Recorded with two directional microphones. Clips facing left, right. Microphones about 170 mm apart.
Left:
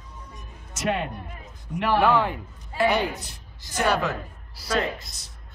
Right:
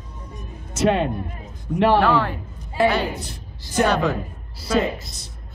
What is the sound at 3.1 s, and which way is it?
Speech, 30° right (ahead or behind).